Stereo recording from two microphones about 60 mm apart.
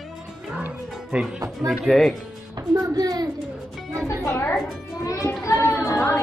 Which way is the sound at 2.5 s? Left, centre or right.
Right.